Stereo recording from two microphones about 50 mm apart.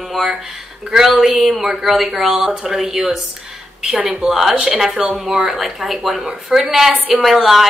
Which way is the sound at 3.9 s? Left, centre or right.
Centre.